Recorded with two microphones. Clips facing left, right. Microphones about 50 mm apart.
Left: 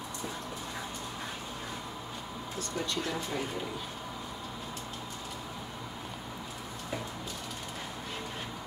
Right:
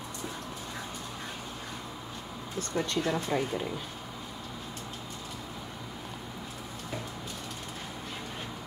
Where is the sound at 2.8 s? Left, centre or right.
Right.